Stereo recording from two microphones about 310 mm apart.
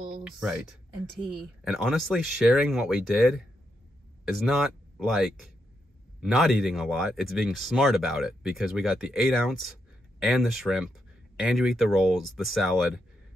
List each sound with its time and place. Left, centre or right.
0.2 s speech: centre